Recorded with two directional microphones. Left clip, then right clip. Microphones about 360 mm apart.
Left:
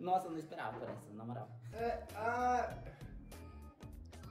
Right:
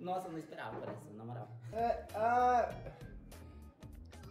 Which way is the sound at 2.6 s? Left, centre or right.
Centre.